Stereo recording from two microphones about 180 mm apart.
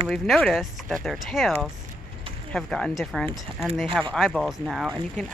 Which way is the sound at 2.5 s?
5° left (ahead or behind).